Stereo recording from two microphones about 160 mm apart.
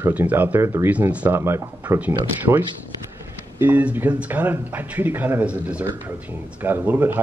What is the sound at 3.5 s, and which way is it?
Speech, 10° right (ahead or behind).